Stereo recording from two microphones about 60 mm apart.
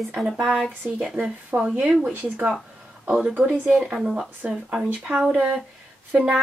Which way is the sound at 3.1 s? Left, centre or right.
Centre.